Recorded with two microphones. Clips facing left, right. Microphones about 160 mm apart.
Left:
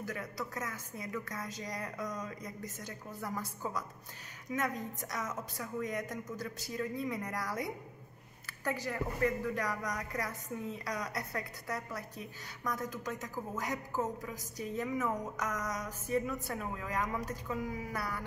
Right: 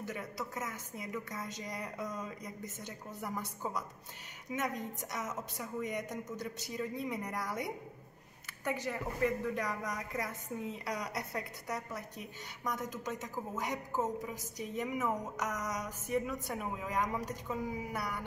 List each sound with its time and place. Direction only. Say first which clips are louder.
0.0 s speech: left 1 dB; 20° right (ahead or behind)